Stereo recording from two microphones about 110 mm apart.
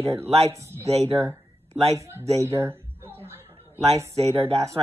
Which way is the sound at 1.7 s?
70° right (ahead or behind).